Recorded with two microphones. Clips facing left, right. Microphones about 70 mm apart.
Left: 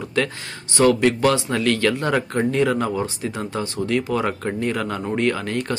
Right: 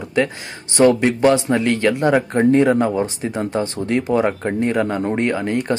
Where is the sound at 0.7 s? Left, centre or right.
Right.